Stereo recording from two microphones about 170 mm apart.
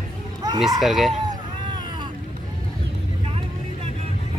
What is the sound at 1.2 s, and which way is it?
Baby cry, 25° right (ahead or behind).